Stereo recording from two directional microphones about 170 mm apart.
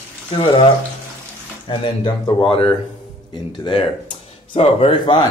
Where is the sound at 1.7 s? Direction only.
25° left (ahead or behind).